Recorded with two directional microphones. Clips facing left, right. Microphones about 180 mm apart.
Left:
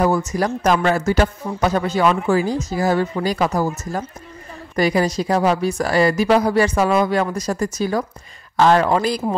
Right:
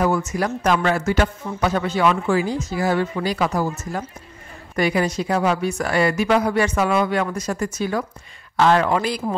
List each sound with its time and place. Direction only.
0.0 s speech: 35° left (ahead or behind)